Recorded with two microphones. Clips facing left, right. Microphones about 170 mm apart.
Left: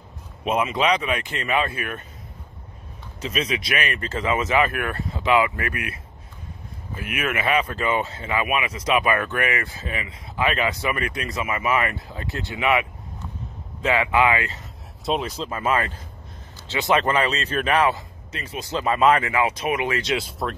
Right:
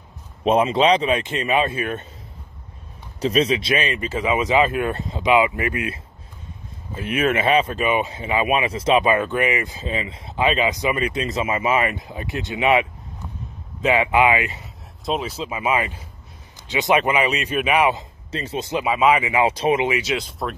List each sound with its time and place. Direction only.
0.5 s speech: 30° right (ahead or behind)
3.2 s speech: 35° right (ahead or behind)
7.0 s speech: 30° right (ahead or behind)
13.8 s speech: 15° right (ahead or behind)
15.0 s speech: centre (ahead or behind)
18.3 s speech: 30° right (ahead or behind)
18.8 s speech: 5° right (ahead or behind)
19.4 s speech: 30° right (ahead or behind)
20.0 s speech: centre (ahead or behind)